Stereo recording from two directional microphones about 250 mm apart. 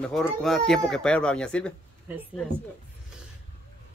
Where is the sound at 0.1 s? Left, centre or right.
Centre.